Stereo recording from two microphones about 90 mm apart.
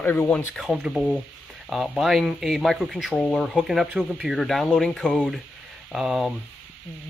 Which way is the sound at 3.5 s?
5° right (ahead or behind).